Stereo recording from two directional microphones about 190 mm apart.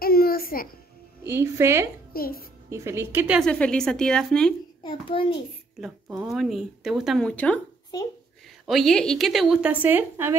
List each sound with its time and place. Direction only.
0.0 s music: 50° left (ahead or behind)
1.2 s a woman's voice: 15° right (ahead or behind)
2.1 s a child's voice: 50° left (ahead or behind)
2.7 s a woman's voice: 15° right (ahead or behind)
3.3 s speech: 5° left (ahead or behind)
4.8 s a child's voice: 25° left (ahead or behind)
5.8 s speech: 5° right (ahead or behind)
7.9 s a child's voice: 20° left (ahead or behind)
8.6 s speech: centre (ahead or behind)